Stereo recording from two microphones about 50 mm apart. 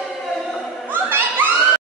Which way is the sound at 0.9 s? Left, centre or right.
Right.